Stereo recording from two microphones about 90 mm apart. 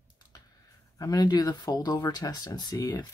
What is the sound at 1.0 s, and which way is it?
Speech, 45° left (ahead or behind).